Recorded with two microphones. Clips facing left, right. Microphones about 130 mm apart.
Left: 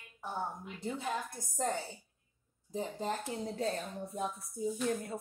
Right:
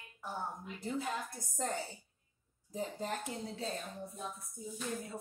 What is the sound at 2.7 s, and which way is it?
Speech, 25° left (ahead or behind).